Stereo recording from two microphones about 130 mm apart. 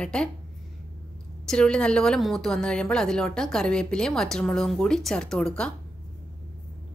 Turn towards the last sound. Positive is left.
turn(degrees=5)  # may be behind; listen again after turning